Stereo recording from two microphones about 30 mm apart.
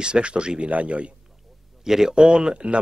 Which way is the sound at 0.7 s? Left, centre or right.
Right.